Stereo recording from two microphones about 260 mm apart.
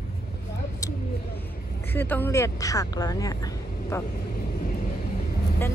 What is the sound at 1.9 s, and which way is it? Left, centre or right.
Speech, centre.